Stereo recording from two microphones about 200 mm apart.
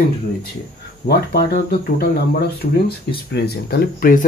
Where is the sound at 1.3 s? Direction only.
50° left (ahead or behind).